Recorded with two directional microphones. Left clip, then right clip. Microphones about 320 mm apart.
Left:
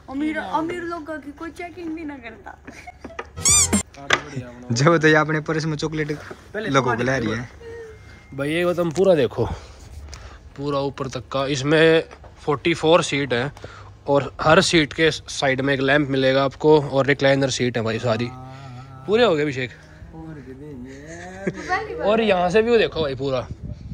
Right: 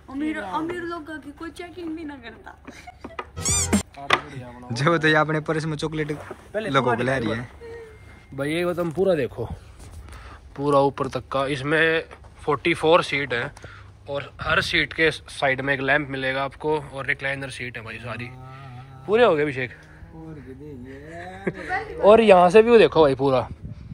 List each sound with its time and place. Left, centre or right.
0.2 s speech: left
0.8 s speech: centre
3.3 s music: centre
4.6 s speech: centre
8.9 s speech: centre
10.6 s speech: centre
19.0 s speech: centre
20.9 s a sound: centre
22.0 s speech: centre